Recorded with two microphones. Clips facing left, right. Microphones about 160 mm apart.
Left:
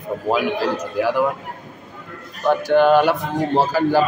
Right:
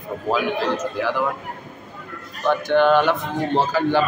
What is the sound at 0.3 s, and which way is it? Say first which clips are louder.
Speech: left 1 dB; 10° left (ahead or behind).